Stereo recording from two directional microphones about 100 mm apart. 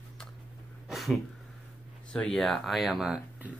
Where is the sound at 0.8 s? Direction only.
Centre (ahead or behind).